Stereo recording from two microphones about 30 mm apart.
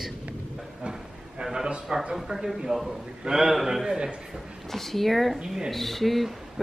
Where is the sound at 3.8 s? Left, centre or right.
Right.